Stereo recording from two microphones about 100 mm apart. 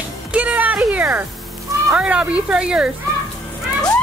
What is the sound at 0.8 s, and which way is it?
Speech, 15° right (ahead or behind).